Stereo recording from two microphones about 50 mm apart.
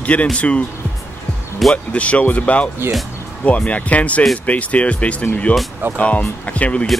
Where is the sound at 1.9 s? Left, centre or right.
Left.